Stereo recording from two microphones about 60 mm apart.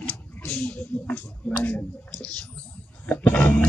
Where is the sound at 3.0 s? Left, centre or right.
Left.